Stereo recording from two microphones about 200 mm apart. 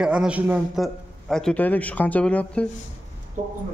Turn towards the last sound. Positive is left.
turn(degrees=-40)  # may be behind; listen again after turning